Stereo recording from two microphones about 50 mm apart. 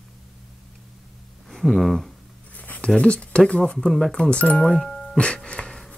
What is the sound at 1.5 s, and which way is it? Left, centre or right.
Speech, centre.